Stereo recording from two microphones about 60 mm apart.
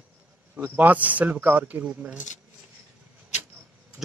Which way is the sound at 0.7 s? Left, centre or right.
Right.